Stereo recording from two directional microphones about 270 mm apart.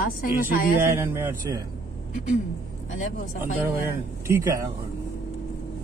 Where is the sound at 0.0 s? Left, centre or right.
Left.